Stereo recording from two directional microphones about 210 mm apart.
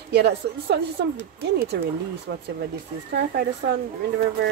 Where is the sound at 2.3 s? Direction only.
55° right (ahead or behind).